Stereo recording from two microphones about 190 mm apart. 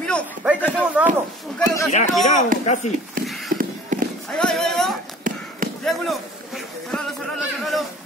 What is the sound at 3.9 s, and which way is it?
Run, 40° right (ahead or behind).